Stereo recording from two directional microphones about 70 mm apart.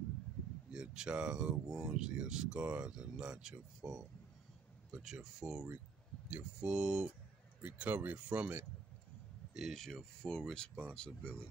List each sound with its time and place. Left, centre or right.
0.7 s speech: centre
9.5 s speech: centre